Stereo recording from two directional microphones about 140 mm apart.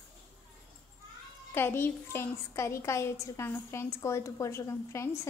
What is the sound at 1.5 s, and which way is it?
A woman's voice, 15° left (ahead or behind).